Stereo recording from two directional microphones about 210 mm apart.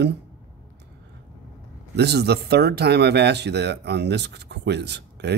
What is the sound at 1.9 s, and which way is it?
Speech, 50° right (ahead or behind).